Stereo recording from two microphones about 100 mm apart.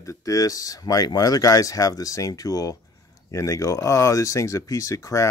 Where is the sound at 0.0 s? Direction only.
30° left (ahead or behind).